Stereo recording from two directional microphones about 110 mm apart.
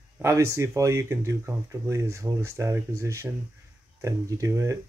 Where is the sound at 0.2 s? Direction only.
25° right (ahead or behind).